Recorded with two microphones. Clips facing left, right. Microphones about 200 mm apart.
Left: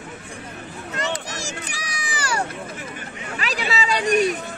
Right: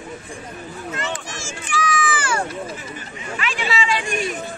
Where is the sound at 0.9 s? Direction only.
40° left (ahead or behind).